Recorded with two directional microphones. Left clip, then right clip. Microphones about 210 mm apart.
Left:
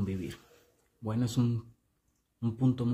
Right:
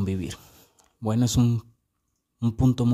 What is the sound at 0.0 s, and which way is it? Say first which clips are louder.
Speech: right 6 dB; 55° right (ahead or behind).